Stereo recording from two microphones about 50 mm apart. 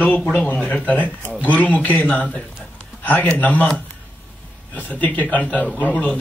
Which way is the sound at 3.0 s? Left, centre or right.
Left.